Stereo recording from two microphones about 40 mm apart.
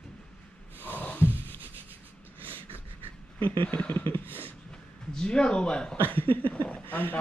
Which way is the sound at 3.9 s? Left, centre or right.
Left.